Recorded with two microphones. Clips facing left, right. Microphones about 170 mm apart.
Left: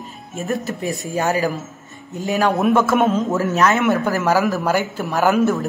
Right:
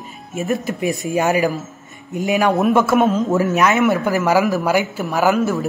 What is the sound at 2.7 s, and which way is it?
Speech, 10° right (ahead or behind).